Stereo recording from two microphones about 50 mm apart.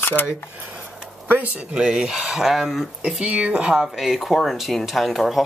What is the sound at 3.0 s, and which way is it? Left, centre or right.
Speech, centre.